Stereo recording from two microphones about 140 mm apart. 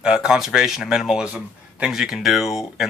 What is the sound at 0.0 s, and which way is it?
Speech, 5° right (ahead or behind).